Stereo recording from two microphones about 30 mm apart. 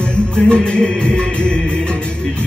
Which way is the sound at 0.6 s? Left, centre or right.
Left.